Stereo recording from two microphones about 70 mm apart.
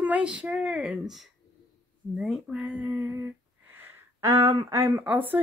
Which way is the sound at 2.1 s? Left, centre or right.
Centre.